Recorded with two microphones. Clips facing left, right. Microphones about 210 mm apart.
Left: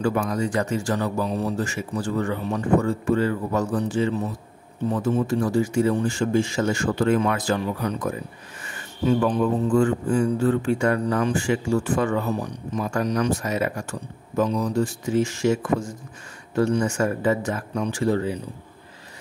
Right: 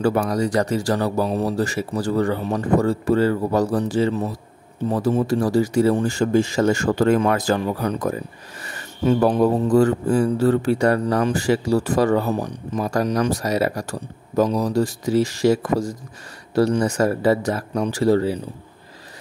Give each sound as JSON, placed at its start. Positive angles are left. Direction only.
{"t": 0.0, "sound": "speech", "side_deg": -35}